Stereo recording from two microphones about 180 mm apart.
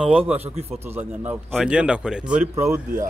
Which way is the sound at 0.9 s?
10° right (ahead or behind).